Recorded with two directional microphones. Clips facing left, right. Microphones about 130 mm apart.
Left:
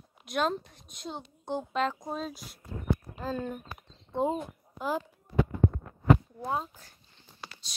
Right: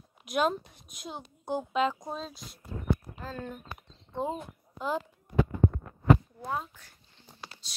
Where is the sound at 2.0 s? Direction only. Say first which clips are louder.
Left 2 dB; 5° left (ahead or behind).